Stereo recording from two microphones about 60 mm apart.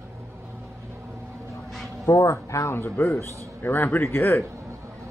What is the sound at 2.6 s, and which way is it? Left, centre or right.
A man's voice, left.